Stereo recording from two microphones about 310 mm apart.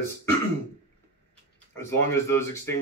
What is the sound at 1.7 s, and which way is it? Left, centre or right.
Speech, centre.